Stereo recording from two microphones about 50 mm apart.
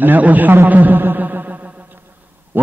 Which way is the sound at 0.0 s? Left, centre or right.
Right.